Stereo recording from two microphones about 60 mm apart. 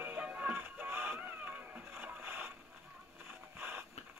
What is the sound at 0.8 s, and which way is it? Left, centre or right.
Music, right.